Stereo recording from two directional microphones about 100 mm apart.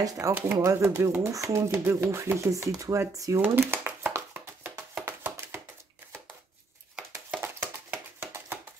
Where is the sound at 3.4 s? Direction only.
20° right (ahead or behind).